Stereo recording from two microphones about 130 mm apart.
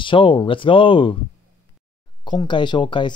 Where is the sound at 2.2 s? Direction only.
35° left (ahead or behind).